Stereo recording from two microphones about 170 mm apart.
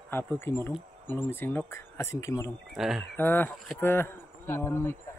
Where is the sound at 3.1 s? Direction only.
10° left (ahead or behind).